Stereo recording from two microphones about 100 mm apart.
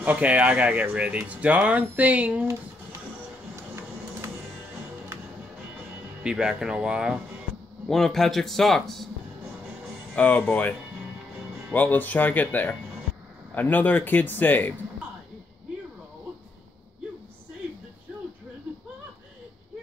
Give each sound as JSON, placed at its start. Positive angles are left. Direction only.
{"t": 0.0, "sound": "speech", "side_deg": -15}
{"t": 3.5, "sound": "printer", "side_deg": -30}
{"t": 6.2, "sound": "speech", "side_deg": -5}
{"t": 7.9, "sound": "a man's voice", "side_deg": 5}
{"t": 10.1, "sound": "speech", "side_deg": 15}
{"t": 11.7, "sound": "speech", "side_deg": 15}